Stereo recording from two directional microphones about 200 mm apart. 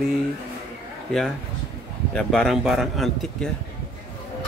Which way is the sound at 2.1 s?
5° left (ahead or behind).